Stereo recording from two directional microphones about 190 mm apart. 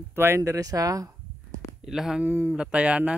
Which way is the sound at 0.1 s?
10° right (ahead or behind).